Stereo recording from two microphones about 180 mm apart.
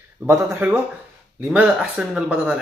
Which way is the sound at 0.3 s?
15° right (ahead or behind).